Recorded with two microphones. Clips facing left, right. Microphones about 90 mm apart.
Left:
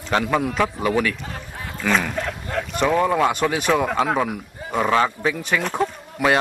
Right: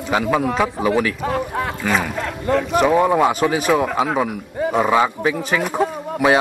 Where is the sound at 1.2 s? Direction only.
75° right (ahead or behind).